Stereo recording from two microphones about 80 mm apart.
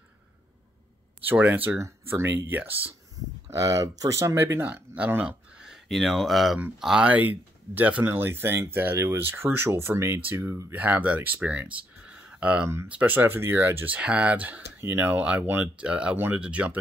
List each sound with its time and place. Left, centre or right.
1.2 s speech: right
1.8 s speech: right
3.4 s speech: right
4.6 s speech: centre
5.9 s speech: centre
7.1 s speech: right